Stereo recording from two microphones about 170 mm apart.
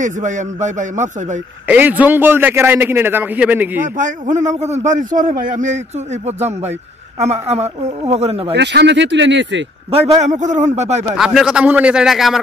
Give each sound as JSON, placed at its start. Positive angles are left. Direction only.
{"t": 0.0, "sound": "a man's voice", "side_deg": -45}
{"t": 1.7, "sound": "a man's voice", "side_deg": -10}
{"t": 3.8, "sound": "a man's voice", "side_deg": -50}
{"t": 7.2, "sound": "speech", "side_deg": -40}
{"t": 8.5, "sound": "speech", "side_deg": -90}
{"t": 9.8, "sound": "speech", "side_deg": -35}
{"t": 11.1, "sound": "a man's voice", "side_deg": -5}